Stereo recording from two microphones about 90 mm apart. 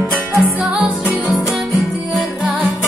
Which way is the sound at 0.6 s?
15° right (ahead or behind).